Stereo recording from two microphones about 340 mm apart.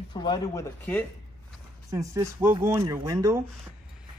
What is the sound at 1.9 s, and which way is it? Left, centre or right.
Speech, centre.